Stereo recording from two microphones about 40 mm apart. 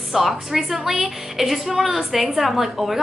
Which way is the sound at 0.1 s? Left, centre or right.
Centre.